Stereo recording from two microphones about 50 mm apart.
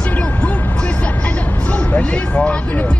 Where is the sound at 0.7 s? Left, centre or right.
Left.